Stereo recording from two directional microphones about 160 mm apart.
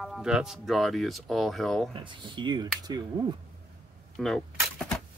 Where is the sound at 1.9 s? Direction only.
30° right (ahead or behind).